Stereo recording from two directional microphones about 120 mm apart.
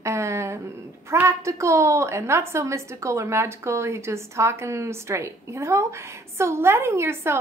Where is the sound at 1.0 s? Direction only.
25° right (ahead or behind).